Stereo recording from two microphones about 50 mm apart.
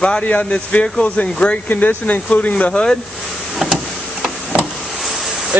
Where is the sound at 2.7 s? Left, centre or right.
Centre.